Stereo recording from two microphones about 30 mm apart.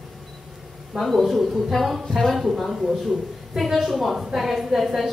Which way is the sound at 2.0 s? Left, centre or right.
Centre.